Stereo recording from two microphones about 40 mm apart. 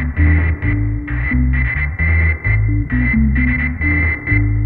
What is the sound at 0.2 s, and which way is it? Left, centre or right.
Music, centre.